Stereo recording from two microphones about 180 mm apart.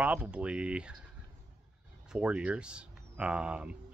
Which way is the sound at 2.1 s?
5° right (ahead or behind).